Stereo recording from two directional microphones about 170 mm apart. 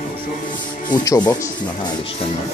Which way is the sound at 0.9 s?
25° left (ahead or behind).